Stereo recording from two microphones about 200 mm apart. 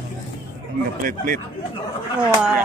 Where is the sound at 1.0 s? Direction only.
45° right (ahead or behind).